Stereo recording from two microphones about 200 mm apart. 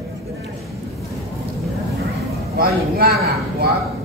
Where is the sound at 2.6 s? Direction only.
50° right (ahead or behind).